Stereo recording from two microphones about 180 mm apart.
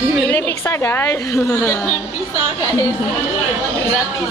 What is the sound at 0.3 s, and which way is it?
A woman's voice, 10° left (ahead or behind).